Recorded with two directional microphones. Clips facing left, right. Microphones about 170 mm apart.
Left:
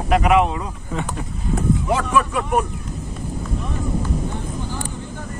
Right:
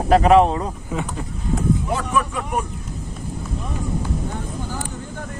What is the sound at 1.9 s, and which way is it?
Speech, 90° left.